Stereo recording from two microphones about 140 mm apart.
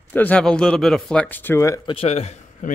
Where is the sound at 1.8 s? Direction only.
45° left (ahead or behind).